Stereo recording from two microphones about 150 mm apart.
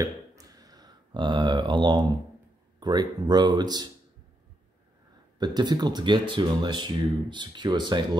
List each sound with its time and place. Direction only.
0.0 s a sound: 25° right (ahead or behind)
2.8 s speech: 30° right (ahead or behind)
5.4 s speech: 30° right (ahead or behind)